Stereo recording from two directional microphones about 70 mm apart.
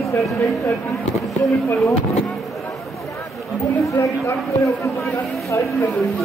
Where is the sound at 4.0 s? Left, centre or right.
Left.